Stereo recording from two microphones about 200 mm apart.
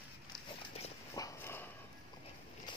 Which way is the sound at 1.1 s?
15° left (ahead or behind).